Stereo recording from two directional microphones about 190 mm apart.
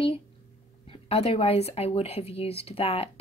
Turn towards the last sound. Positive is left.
turn(degrees=30)  # may be behind; listen again after turning